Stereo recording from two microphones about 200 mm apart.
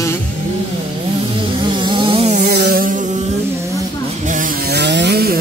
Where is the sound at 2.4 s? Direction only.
50° right (ahead or behind).